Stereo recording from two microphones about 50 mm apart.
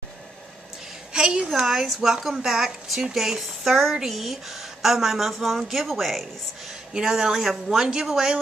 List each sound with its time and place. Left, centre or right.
1.1 s a woman's voice: centre
6.7 s speech: centre